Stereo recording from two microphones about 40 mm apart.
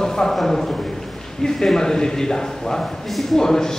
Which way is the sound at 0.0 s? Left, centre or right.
Centre.